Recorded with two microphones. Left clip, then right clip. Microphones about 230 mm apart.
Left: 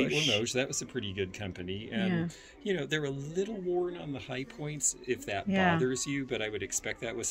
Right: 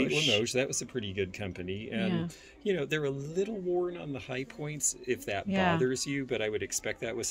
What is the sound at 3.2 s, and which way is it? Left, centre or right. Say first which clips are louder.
Speech: right 2 dB; right.